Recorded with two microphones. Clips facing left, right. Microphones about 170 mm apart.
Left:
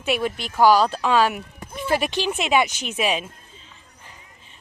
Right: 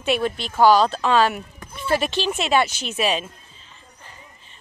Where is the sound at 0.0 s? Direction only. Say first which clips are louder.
Right 2 dB; 10° left (ahead or behind).